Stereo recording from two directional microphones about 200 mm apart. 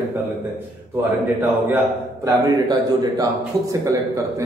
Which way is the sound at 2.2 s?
20° right (ahead or behind).